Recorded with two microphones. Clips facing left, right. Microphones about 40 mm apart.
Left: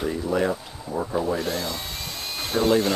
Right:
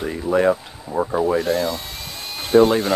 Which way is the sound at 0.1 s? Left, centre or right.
Right.